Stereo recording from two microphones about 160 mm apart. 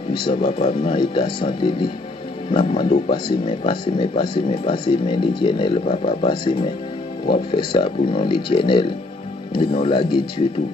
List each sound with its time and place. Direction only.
0.1 s speech: 30° left (ahead or behind)